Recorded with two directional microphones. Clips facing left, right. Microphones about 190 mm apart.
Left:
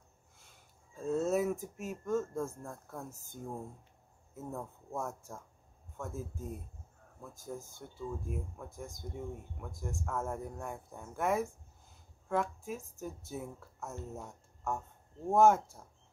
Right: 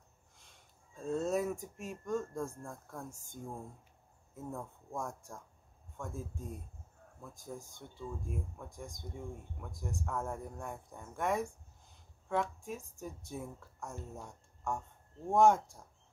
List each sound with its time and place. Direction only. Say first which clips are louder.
0.9 s speech: left 2 dB; 5° left (ahead or behind)
4.4 s speech: left 1 dB; 5° left (ahead or behind)